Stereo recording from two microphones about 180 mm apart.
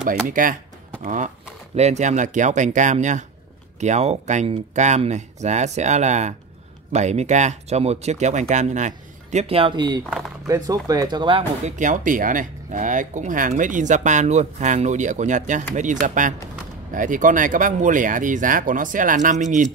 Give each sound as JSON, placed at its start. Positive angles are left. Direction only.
{"t": 0.3, "sound": "speech", "side_deg": -50}
{"t": 11.6, "sound": "speech", "side_deg": -45}